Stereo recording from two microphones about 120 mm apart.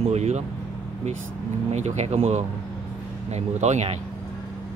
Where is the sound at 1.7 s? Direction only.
70° right (ahead or behind).